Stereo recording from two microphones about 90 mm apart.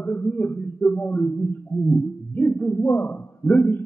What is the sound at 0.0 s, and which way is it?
A man's voice, 20° left (ahead or behind).